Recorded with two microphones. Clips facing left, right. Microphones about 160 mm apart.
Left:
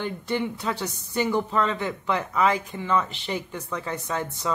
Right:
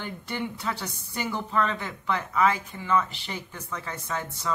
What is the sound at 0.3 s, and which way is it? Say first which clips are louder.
Speech: left 4 dB; 20° left (ahead or behind).